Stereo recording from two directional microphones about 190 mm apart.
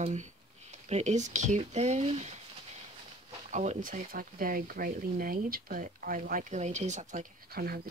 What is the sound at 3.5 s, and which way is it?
Speech, 40° right (ahead or behind).